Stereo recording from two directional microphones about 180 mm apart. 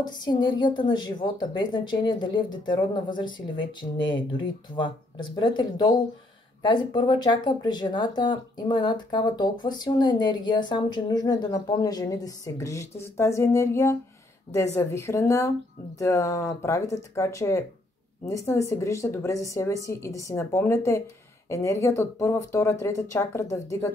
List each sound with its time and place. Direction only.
0.0 s a woman's voice: 25° left (ahead or behind)